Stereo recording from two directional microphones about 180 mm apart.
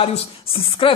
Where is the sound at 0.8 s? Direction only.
30° left (ahead or behind).